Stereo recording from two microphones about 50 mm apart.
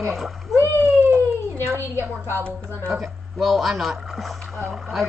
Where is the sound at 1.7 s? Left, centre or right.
Right.